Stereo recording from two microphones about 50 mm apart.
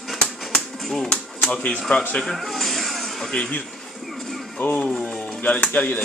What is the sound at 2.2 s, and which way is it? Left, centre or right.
Music, centre.